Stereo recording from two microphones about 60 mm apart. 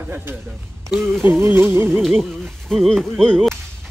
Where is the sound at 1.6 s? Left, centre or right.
Right.